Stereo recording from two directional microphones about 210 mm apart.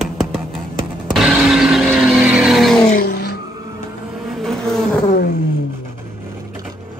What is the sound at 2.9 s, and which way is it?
Vehicle, 45° left (ahead or behind).